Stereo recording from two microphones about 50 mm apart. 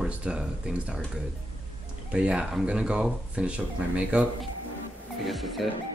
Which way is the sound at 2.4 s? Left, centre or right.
Centre.